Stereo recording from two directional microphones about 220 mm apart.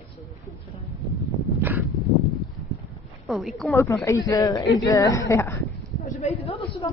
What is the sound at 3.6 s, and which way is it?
Speech, 15° left (ahead or behind).